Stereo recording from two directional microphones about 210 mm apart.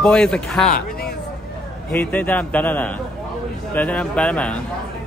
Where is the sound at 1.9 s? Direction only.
5° left (ahead or behind).